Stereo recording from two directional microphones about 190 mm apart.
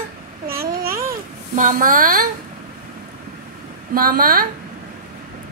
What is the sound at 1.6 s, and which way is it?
Speech, 45° right (ahead or behind).